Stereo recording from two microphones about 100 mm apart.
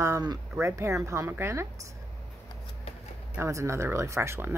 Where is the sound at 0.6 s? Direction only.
30° right (ahead or behind).